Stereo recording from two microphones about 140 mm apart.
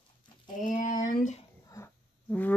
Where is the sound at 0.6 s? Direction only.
65° left (ahead or behind).